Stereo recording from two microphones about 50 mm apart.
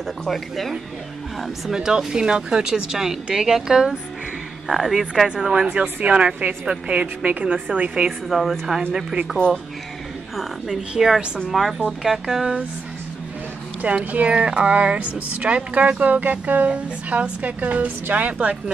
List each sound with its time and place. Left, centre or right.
0.2 s speech: centre
1.7 s speech: centre
4.6 s speech: centre
5.3 s speech: centre
8.3 s speech: centre
10.3 s speech: centre
13.8 s speech: right